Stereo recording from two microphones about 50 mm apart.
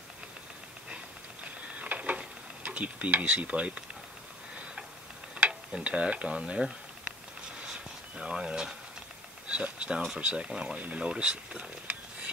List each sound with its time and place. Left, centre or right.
1.8 s a sound: right
5.5 s speech: centre
8.2 s speech: centre